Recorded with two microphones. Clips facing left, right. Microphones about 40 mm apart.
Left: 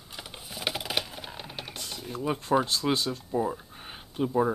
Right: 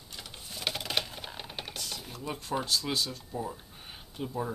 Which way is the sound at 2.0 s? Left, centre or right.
Centre.